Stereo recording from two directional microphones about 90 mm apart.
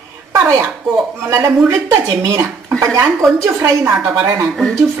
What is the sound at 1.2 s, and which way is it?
Speech, 35° right (ahead or behind).